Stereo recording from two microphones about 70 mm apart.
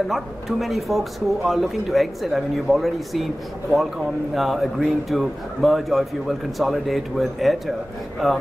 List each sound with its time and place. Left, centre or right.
0.1 s speech: centre
4.4 s speech: centre